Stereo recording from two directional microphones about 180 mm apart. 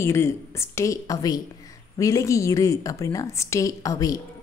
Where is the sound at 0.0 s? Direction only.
15° left (ahead or behind).